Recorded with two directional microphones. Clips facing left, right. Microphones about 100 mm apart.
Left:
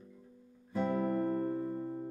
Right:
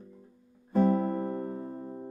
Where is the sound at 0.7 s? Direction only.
40° right (ahead or behind).